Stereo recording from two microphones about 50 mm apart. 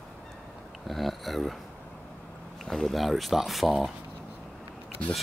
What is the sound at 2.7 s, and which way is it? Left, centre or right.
Speech, centre.